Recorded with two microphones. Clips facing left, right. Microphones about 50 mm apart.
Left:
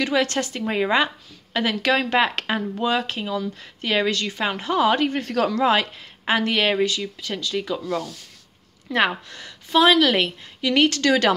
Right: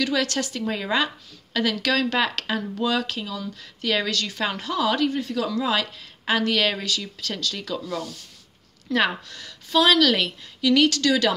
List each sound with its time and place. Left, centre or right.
0.0 s a woman's voice: left
5.6 s a woman's voice: left